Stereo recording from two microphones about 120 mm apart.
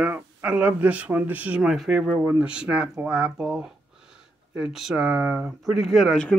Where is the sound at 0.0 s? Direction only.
15° right (ahead or behind).